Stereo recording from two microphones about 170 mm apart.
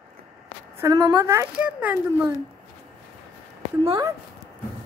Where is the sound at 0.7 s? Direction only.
20° right (ahead or behind).